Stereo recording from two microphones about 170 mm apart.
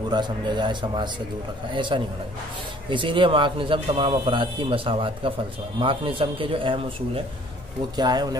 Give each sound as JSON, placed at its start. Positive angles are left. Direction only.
{"t": 0.1, "sound": "a man's voice", "side_deg": -25}